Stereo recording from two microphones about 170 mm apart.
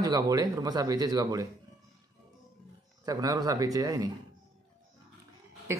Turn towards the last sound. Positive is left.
turn(degrees=-15)  # may be behind; listen again after turning